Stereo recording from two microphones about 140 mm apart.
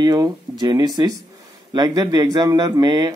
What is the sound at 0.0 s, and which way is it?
A man's voice, 30° right (ahead or behind).